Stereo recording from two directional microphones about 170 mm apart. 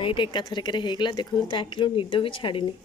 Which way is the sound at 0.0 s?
30° left (ahead or behind).